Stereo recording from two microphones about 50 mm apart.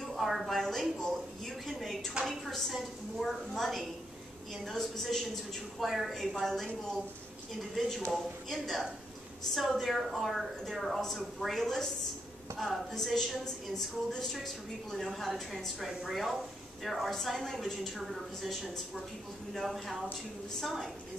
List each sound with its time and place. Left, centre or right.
0.0 s a woman's voice: centre
8.5 s a woman's voice: centre